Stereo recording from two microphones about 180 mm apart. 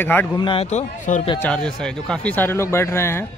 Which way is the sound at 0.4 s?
30° left (ahead or behind).